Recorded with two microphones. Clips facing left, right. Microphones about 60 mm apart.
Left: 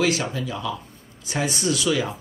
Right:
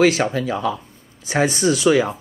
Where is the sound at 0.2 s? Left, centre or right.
Right.